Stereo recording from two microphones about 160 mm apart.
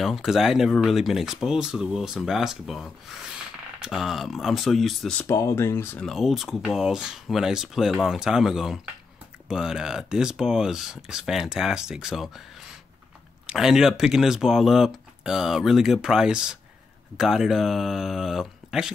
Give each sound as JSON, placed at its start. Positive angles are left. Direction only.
{"t": 0.0, "sound": "speech", "side_deg": 0}
{"t": 5.2, "sound": "speech", "side_deg": 15}
{"t": 6.0, "sound": "speech", "side_deg": 0}
{"t": 13.5, "sound": "speech", "side_deg": -5}